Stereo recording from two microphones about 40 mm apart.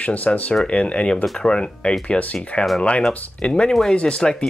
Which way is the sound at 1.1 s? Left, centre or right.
Centre.